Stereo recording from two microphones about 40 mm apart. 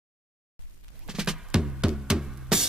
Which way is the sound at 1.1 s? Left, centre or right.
Centre.